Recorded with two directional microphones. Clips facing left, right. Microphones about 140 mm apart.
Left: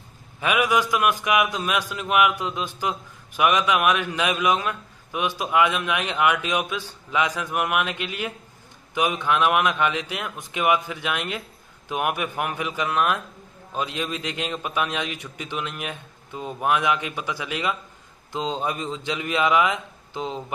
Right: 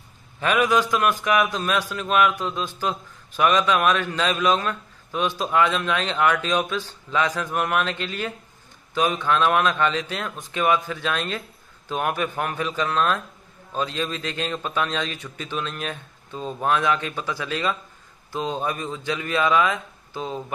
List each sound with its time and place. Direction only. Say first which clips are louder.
0.4 s a man's voice: right 1 dB; 10° left (ahead or behind)